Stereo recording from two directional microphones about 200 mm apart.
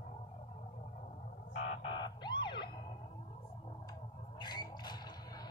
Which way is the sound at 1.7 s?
25° left (ahead or behind).